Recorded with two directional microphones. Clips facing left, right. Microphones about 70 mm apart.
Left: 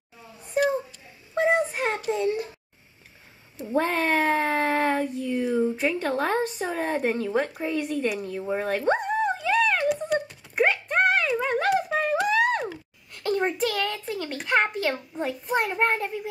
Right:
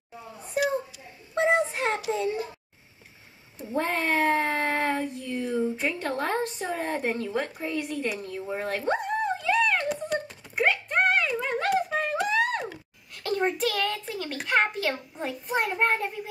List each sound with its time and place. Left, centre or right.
1.3 s child singing: centre
1.7 s child singing: centre
2.2 s a sound: right
3.5 s child singing: centre
5.6 s a woman's voice: centre
8.6 s a sound: centre
15.1 s a child's voice: centre